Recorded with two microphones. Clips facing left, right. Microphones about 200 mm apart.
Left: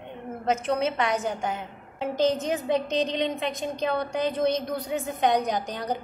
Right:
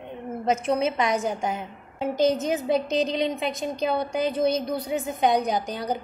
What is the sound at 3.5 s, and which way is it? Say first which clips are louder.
A woman's voice: right 2 dB; 5° right (ahead or behind).